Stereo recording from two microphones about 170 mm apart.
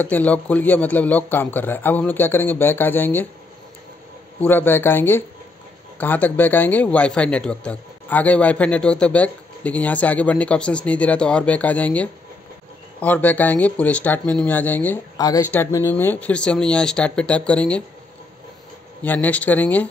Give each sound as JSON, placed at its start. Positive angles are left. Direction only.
{"t": 0.0, "sound": "a man's voice", "side_deg": 10}
{"t": 4.4, "sound": "a man's voice", "side_deg": 10}
{"t": 15.1, "sound": "a man's voice", "side_deg": 20}
{"t": 19.0, "sound": "a man's voice", "side_deg": 10}